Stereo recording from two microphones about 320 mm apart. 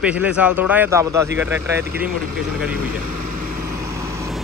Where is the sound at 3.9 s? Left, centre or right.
Centre.